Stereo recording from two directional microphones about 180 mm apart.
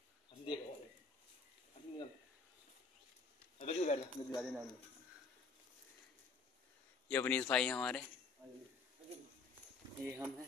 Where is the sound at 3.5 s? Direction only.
40° left (ahead or behind).